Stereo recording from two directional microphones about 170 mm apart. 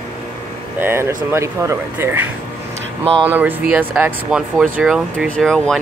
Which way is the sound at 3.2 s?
10° right (ahead or behind).